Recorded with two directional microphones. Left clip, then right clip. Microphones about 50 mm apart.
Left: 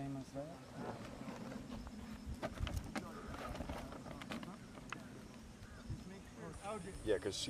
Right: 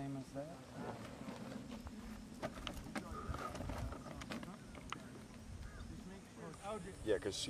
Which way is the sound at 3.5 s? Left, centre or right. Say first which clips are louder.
Even; centre.